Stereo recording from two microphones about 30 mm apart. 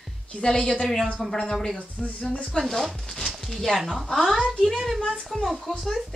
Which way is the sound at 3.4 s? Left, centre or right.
Centre.